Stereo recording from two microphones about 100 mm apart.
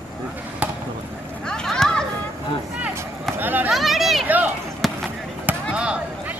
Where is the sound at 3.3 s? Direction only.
20° right (ahead or behind).